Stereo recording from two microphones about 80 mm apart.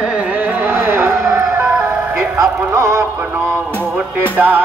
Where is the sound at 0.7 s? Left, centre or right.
Right.